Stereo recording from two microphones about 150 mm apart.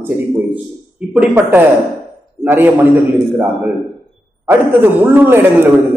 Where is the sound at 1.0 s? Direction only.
5° right (ahead or behind).